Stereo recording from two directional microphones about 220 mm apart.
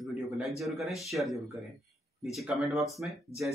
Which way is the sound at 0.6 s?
Centre (ahead or behind).